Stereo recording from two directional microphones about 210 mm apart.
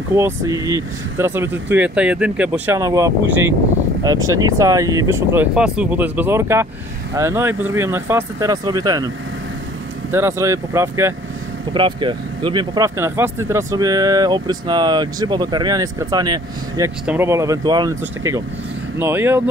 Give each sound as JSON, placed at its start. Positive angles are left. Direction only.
{"t": 0.1, "sound": "speech", "side_deg": -15}
{"t": 10.1, "sound": "speech", "side_deg": -15}
{"t": 11.7, "sound": "speech", "side_deg": -25}